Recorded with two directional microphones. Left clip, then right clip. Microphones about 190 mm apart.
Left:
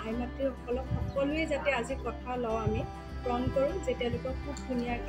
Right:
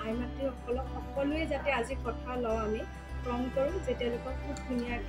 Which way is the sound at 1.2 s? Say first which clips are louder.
Left 2 dB; 5° left (ahead or behind).